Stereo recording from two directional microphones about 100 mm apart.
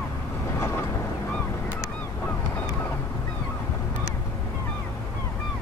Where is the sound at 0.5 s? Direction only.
30° left (ahead or behind).